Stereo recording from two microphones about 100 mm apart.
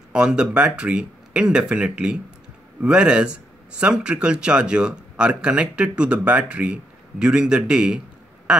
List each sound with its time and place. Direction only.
0.1 s speech: 10° right (ahead or behind)